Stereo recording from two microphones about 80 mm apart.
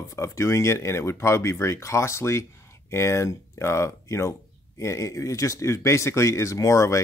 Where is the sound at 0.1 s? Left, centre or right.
Left.